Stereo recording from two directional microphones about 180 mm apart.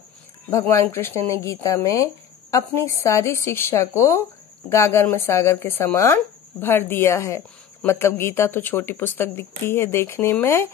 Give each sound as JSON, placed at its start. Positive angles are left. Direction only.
{"t": 0.5, "sound": "a woman's voice", "side_deg": 15}